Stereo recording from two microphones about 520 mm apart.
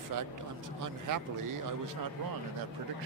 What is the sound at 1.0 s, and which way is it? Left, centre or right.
Speech, right.